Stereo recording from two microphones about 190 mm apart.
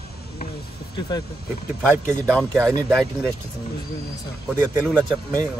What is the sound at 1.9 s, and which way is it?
Speech, 10° right (ahead or behind).